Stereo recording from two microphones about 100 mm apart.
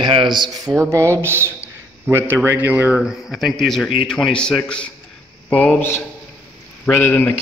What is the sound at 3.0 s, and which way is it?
A man's voice, centre (ahead or behind).